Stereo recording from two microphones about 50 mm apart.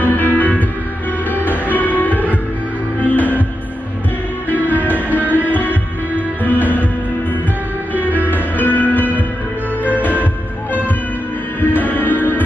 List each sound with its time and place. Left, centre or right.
0.0 s music: left
4.5 s music: left
4.9 s music: right
5.5 s music: left
8.0 s music: left
11.6 s music: left